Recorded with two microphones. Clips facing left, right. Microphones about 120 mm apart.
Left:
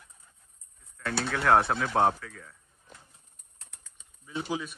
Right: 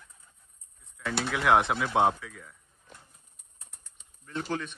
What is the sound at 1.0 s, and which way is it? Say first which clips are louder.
Speech: even; 5° right (ahead or behind).